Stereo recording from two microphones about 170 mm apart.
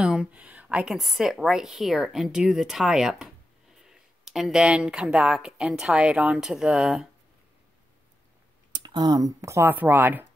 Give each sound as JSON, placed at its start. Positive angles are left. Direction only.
{"t": 0.0, "sound": "a woman's voice", "side_deg": -5}
{"t": 8.7, "sound": "speech", "side_deg": -25}